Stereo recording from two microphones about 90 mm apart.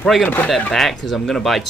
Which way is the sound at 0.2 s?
20° left (ahead or behind).